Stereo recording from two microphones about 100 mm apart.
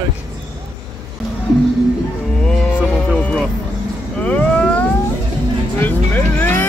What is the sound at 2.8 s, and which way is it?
Music, 5° left (ahead or behind).